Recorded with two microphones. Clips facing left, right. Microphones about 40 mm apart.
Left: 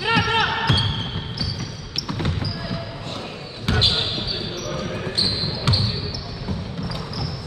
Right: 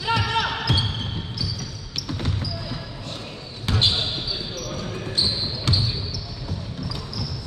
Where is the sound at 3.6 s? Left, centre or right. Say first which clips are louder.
Left 2 dB; centre.